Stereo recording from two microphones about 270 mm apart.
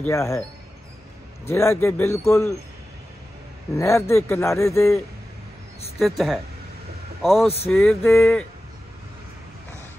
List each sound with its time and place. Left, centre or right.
0.0 s a man's voice: centre
1.5 s a man's voice: centre
3.7 s a man's voice: centre
5.9 s male singing: centre
7.2 s a man's voice: centre
7.4 s speech: left
7.7 s male singing: centre